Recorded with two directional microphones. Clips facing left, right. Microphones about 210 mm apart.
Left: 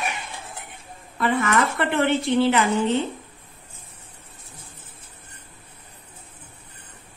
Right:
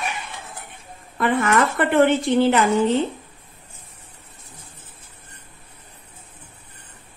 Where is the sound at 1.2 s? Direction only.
50° right (ahead or behind).